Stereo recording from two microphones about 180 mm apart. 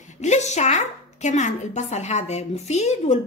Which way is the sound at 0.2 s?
40° left (ahead or behind).